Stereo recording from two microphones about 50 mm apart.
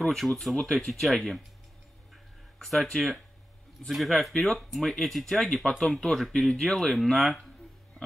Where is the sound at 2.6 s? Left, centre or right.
Centre.